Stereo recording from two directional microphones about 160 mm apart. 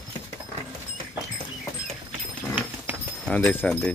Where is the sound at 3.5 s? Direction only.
10° left (ahead or behind).